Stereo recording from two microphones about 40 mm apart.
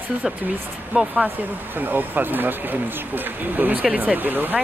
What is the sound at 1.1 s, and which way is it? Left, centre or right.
Speech, right.